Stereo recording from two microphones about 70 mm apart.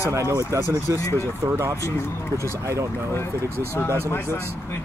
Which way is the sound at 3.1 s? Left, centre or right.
Left.